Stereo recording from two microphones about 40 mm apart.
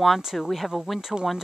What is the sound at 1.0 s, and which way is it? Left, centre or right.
Speech, centre.